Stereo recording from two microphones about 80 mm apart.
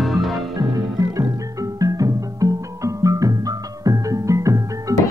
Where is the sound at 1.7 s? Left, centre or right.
Right.